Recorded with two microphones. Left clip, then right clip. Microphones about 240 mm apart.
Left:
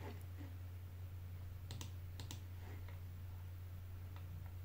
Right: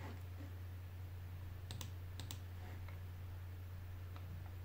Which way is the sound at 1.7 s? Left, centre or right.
Right.